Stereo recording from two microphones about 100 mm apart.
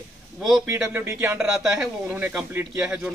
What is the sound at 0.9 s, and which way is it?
Speech, 20° right (ahead or behind).